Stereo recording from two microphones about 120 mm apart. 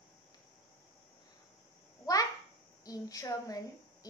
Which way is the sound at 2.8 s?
30° left (ahead or behind).